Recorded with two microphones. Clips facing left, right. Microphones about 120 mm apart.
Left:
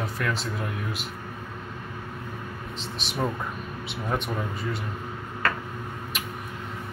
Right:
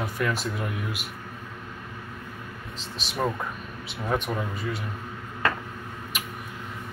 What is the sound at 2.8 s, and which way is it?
Speech, 40° right (ahead or behind).